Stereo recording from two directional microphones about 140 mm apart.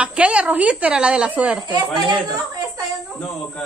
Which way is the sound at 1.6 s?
35° right (ahead or behind).